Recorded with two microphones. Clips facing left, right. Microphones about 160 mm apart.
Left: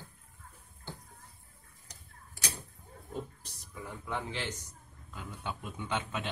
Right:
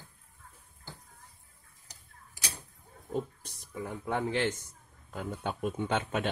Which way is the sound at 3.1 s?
45° right (ahead or behind).